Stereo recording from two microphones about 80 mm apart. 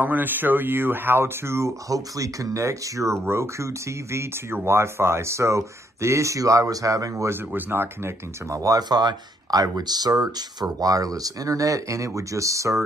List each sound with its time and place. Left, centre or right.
0.0 s speech: right
1.9 s speech: right
7.2 s speech: right
8.5 s speech: right